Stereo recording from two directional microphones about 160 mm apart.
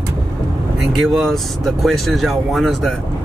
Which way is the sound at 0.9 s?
Centre (ahead or behind).